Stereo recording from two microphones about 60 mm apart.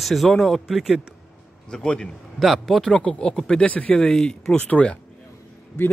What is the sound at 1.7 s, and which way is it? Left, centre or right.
Speech, centre.